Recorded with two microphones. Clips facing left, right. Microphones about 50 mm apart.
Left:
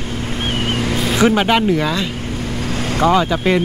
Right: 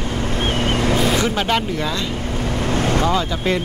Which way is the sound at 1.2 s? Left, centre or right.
Left.